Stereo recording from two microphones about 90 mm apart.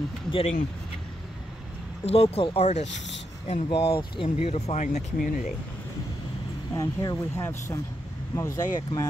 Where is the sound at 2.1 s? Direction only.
90° left.